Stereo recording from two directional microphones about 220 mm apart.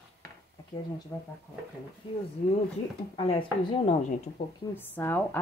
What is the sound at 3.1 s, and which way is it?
Speech, 25° left (ahead or behind).